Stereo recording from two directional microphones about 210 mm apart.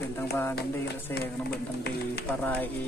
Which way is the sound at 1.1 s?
50° left (ahead or behind).